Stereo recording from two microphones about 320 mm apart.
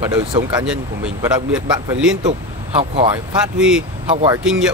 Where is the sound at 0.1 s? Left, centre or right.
Centre.